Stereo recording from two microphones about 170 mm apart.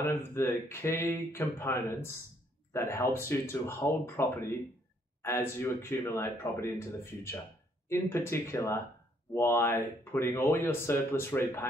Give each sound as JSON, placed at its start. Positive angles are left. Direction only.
{"t": 0.0, "sound": "speech", "side_deg": 15}